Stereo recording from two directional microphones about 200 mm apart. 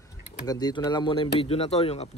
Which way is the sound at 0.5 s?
20° left (ahead or behind).